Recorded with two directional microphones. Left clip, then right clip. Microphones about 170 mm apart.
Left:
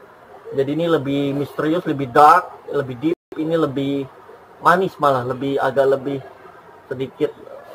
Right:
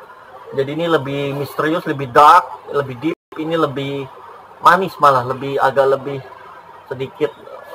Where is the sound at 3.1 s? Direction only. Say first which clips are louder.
Even; 25° left (ahead or behind).